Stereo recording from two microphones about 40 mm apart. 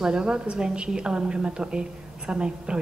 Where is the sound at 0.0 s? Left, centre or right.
Right.